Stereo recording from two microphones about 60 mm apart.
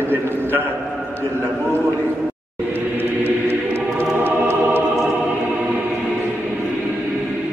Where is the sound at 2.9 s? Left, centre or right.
Right.